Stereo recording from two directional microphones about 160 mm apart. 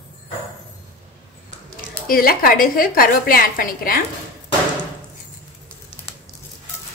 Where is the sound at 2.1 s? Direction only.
65° left (ahead or behind).